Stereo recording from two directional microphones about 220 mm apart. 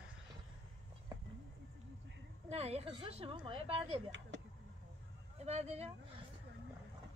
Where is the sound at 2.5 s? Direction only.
30° right (ahead or behind).